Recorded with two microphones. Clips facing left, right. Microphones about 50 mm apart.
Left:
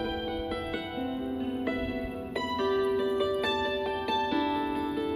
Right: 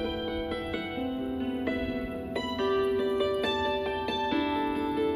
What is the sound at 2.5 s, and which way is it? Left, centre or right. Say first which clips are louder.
Music: even; right.